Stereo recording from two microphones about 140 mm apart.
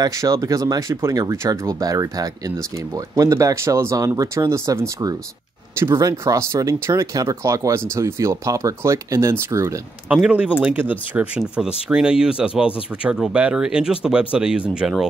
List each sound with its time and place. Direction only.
0.0 s speech: 25° right (ahead or behind)
10.0 s speech: 10° right (ahead or behind)